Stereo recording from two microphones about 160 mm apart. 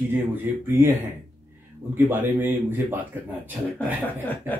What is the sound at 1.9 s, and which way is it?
Speech, 10° right (ahead or behind).